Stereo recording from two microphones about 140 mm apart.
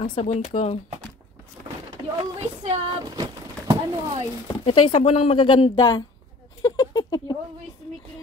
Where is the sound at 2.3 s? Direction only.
50° right (ahead or behind).